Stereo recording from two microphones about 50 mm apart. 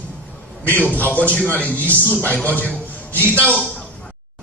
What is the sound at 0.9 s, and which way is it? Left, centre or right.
A man's voice, left.